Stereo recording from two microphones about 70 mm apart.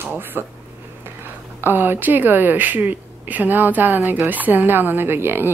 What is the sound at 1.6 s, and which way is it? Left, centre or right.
A woman's voice, right.